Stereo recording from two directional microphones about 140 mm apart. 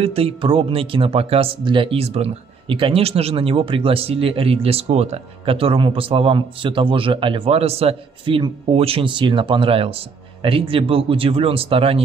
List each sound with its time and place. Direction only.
0.0 s speech: 45° right (ahead or behind)